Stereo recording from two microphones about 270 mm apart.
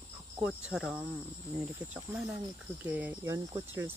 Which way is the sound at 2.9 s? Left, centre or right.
Centre.